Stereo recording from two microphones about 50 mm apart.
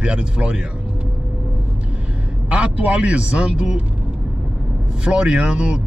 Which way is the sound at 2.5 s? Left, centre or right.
Right.